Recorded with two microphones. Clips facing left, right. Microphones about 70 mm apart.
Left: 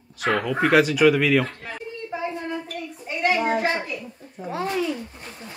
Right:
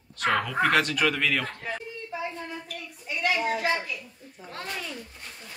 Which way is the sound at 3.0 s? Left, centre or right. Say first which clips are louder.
Left 4 dB; left.